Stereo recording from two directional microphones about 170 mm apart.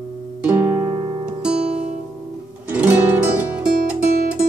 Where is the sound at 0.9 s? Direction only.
20° right (ahead or behind).